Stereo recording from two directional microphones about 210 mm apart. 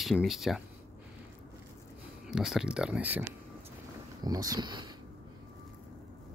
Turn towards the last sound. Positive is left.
turn(degrees=-20)  # may be behind; listen again after turning